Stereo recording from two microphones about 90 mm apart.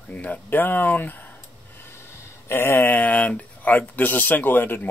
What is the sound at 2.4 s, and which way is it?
Speech, 25° left (ahead or behind).